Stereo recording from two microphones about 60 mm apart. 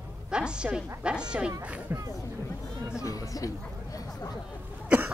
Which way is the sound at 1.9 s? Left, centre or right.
Right.